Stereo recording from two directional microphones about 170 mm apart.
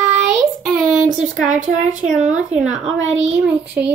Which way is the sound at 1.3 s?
Centre (ahead or behind).